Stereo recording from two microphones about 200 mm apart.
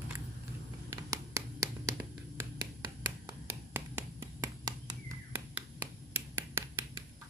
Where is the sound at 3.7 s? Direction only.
10° right (ahead or behind).